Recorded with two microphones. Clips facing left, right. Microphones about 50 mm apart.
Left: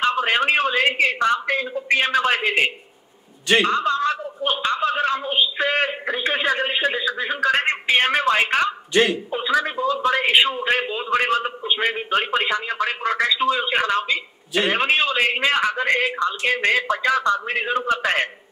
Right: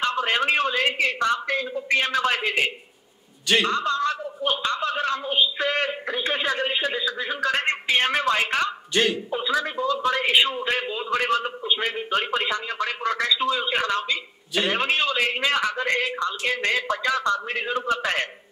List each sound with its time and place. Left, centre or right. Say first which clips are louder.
0.0 s a man's voice: left 3 dB; left
3.4 s a man's voice: left 3 dB; centre; by 8.6 s left
8.6 s a man's voice: left 4 dB; centre
9.3 s a man's voice: left 3 dB; left
11.2 s speech: left 2 dB; left
11.7 s a man's voice: left 3 dB; left
17.1 s speech: left 4 dB; left
17.6 s a man's voice: left 3 dB; left
18.0 s speech: left 4 dB; left